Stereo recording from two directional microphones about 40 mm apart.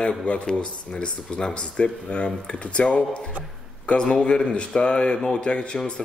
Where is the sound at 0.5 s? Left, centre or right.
Left.